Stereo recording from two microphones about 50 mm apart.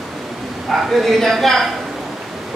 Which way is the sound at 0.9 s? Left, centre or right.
Centre.